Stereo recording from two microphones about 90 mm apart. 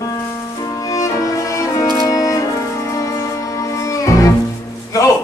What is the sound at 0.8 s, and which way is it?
Music, 35° left (ahead or behind).